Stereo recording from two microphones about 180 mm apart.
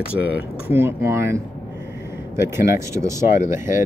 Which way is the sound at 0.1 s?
10° right (ahead or behind).